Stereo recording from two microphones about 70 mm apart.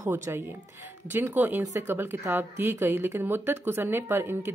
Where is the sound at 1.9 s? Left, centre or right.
Right.